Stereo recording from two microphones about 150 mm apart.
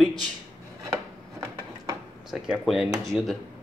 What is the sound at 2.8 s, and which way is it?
Speech, 20° right (ahead or behind).